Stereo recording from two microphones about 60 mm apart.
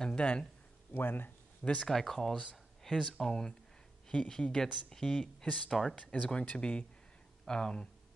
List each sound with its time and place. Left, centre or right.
0.0 s a sound: centre
0.9 s speech: left
1.6 s speech: left
1.9 s speech: centre
2.5 s a sound: centre
3.1 s speech: centre
5.7 s speech: centre
5.9 s speech: centre